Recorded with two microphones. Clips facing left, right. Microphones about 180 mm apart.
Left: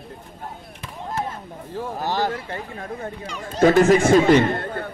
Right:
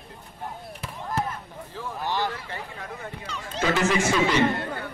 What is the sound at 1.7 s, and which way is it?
Speech, 45° left (ahead or behind).